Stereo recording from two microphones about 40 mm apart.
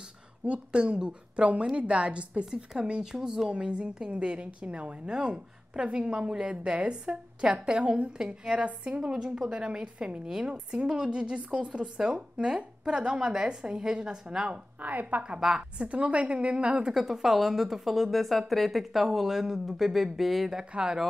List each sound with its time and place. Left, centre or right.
0.5 s a woman's voice: right
3.4 s a woman's voice: right
9.1 s a woman's voice: centre
14.8 s a woman's voice: right
15.8 s a woman's voice: right
16.9 s a woman's voice: centre
20.7 s a woman's voice: right